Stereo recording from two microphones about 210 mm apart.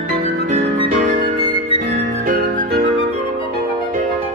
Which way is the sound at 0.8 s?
25° right (ahead or behind).